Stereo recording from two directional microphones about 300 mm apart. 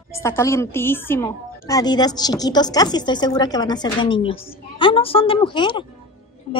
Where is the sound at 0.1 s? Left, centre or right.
Centre.